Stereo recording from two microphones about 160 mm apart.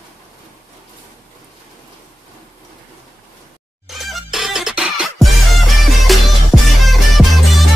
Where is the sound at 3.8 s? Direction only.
Centre (ahead or behind).